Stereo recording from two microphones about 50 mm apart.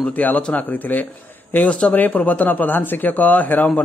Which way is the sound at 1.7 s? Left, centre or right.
Left.